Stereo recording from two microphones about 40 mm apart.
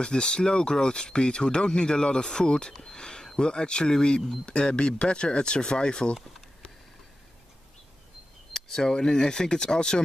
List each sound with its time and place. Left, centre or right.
0.0 s speech: left
2.8 s a sound: left
3.3 s speech: left
8.5 s speech: centre